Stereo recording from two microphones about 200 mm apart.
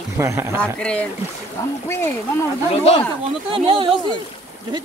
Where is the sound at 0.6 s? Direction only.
5° left (ahead or behind).